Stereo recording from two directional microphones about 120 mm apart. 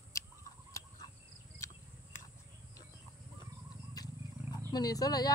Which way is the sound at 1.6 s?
25° left (ahead or behind).